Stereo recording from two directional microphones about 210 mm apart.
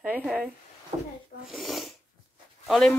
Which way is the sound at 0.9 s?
30° right (ahead or behind).